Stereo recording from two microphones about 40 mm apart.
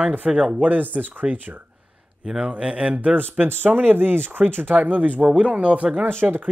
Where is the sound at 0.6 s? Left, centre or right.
Right.